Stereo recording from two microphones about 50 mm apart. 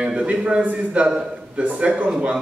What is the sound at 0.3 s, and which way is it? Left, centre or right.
A man's voice, right.